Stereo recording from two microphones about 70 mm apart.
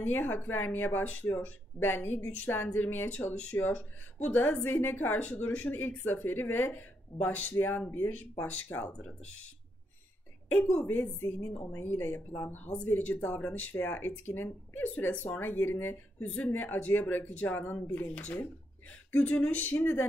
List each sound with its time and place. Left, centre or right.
0.1 s speech: left
10.5 s speech: left